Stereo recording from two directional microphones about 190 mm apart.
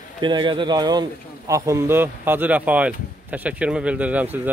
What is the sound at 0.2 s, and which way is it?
Speech, 25° right (ahead or behind).